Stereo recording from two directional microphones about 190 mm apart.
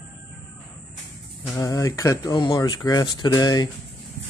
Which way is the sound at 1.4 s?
15° left (ahead or behind).